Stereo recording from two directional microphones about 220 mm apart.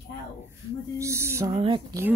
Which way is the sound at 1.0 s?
10° right (ahead or behind).